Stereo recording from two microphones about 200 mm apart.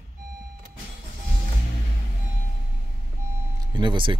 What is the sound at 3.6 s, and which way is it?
Speech, 25° right (ahead or behind).